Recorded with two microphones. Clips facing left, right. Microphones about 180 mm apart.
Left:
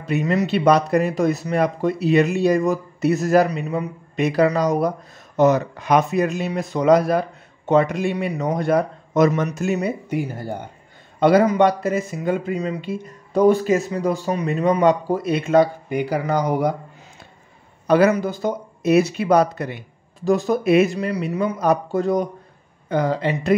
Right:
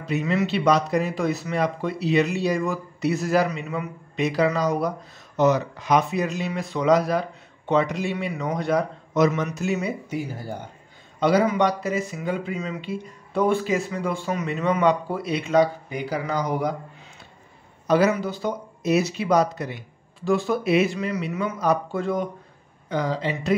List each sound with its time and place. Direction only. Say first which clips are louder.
0.0 s speech: left 3 dB; 45° left (ahead or behind)
4.2 s a man's voice: left 4 dB; 55° left (ahead or behind)
17.8 s a man's voice: left 4 dB; 60° left (ahead or behind)
18.1 s speech: left 4 dB; 45° left (ahead or behind)
20.2 s speech: left 4 dB; 40° left (ahead or behind)
22.8 s speech: left 5 dB; 55° left (ahead or behind)